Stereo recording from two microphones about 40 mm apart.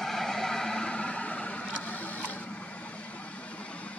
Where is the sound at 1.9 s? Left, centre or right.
Left.